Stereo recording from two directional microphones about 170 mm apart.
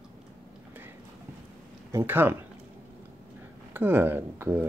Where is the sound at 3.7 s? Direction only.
10° right (ahead or behind).